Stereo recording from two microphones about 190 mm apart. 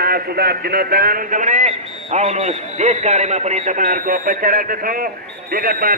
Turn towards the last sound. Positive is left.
turn(degrees=-50)  # may be behind; listen again after turning